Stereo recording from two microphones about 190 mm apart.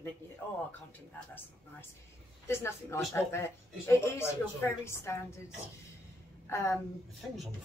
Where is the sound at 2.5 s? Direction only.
15° left (ahead or behind).